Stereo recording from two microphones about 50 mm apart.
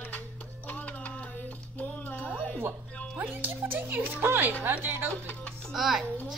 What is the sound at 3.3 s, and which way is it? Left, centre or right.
A woman's voice, right.